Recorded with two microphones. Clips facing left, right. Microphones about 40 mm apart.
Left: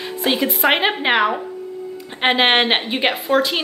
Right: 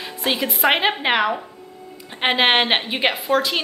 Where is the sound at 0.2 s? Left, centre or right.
Centre.